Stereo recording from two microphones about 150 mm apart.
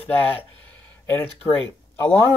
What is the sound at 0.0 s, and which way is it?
Speech, 15° left (ahead or behind).